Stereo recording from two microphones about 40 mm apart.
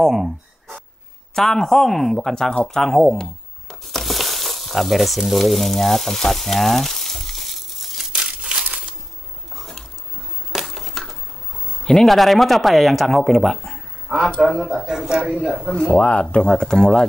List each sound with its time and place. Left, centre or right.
0.0 s a sound: centre
1.3 s speech: centre
3.8 s frying: centre
8.2 s crushing: right
8.6 s a sound: right
9.6 s a sound: centre
11.8 s speech: centre
14.0 s speech: centre
16.0 s speech: left